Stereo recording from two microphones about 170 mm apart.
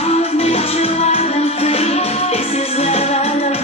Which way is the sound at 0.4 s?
35° left (ahead or behind).